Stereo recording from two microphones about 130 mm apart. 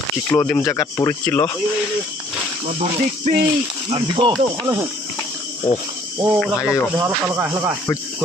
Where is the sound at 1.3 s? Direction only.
15° left (ahead or behind).